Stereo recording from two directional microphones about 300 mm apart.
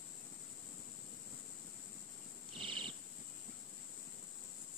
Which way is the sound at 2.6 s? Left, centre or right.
Centre.